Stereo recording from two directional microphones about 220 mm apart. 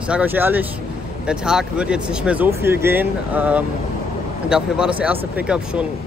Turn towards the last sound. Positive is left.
turn(degrees=-5)  # may be behind; listen again after turning